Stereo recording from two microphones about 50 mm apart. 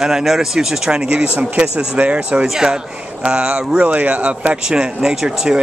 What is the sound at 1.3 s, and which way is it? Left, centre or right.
Speech, right.